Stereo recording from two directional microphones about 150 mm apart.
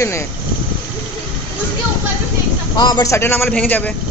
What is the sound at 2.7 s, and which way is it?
A man's voice, 30° left (ahead or behind).